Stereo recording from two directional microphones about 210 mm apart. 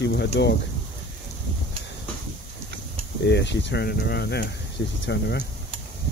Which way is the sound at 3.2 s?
55° left (ahead or behind).